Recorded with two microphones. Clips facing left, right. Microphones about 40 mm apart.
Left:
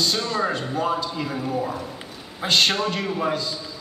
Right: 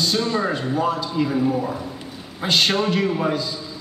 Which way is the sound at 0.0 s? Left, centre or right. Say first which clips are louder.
Right 2 dB; centre.